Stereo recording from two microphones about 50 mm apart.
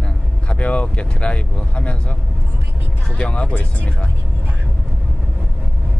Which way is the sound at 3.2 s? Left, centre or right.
Left.